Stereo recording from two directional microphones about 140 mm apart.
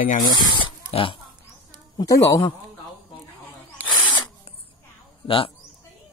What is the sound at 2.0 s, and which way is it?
Speech, 25° left (ahead or behind).